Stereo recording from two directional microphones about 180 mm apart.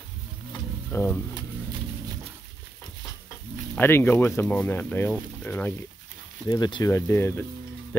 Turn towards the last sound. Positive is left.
turn(degrees=15)  # may be behind; listen again after turning